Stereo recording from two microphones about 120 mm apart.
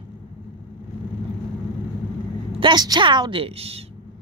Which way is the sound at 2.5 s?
40° right (ahead or behind).